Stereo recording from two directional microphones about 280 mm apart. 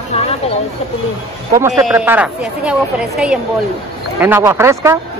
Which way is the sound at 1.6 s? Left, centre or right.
Centre.